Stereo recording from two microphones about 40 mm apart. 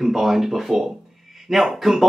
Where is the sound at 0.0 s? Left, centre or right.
Centre.